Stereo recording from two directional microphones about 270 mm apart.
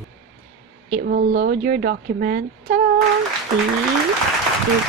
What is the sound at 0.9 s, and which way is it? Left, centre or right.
A woman's voice, right.